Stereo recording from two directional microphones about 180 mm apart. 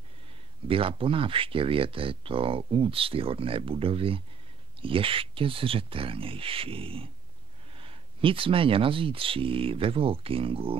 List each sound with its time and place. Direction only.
0.7 s speech: 30° right (ahead or behind)